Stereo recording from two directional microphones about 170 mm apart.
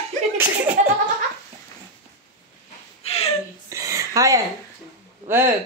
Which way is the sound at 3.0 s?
35° left (ahead or behind).